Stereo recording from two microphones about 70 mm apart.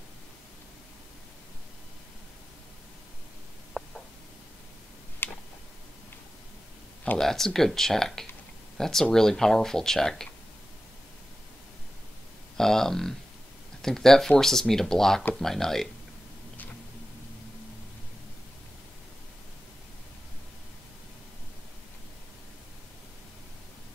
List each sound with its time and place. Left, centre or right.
3.8 s a sound: centre
5.2 s tick: left
7.2 s speech: centre
12.5 s speech: centre